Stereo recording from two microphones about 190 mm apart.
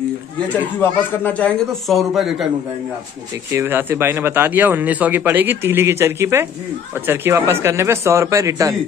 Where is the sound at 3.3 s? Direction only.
15° right (ahead or behind).